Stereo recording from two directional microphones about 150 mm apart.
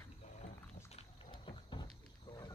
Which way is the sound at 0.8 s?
40° left (ahead or behind).